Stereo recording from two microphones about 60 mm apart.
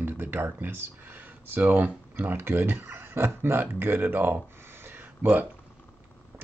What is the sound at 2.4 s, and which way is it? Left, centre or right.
Speech, right.